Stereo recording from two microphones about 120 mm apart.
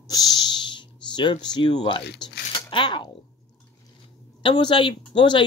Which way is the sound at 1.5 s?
40° left (ahead or behind).